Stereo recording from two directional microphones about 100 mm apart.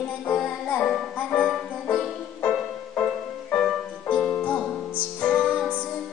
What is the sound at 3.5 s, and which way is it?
Music, centre (ahead or behind).